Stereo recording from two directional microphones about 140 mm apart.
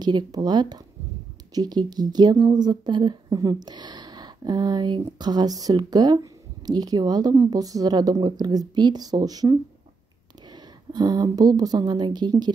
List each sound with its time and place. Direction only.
0.0 s a woman's voice: 30° right (ahead or behind)